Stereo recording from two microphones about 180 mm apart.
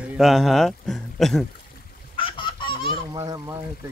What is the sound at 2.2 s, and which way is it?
Goose, 25° left (ahead or behind).